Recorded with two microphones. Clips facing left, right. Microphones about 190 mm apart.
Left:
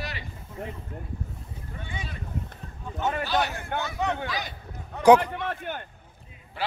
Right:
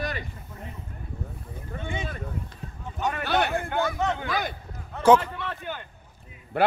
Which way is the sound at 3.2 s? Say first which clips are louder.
Right 2 dB; 60° right (ahead or behind).